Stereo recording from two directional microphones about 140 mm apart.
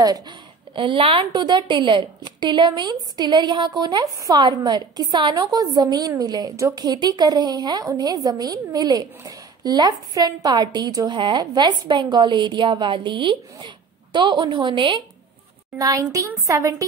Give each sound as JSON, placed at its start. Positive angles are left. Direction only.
{"t": 0.7, "sound": "a woman's voice", "side_deg": -40}
{"t": 15.8, "sound": "speech", "side_deg": -25}